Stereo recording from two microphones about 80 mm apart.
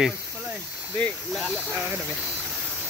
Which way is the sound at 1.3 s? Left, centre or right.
Centre.